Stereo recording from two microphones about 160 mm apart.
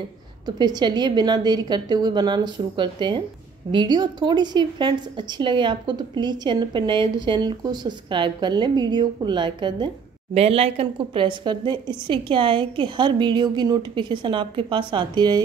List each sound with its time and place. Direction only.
0.5 s a woman's voice: 25° right (ahead or behind)